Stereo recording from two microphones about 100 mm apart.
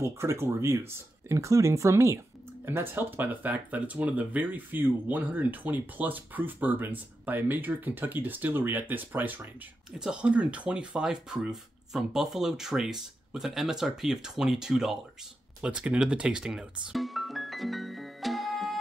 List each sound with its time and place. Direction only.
0.0 s speech: 25° right (ahead or behind); by 15.0 s 5° right (ahead or behind)
15.6 s music: 10° right (ahead or behind)